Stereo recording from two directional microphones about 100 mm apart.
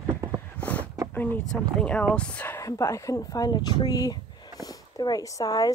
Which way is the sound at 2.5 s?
30° left (ahead or behind).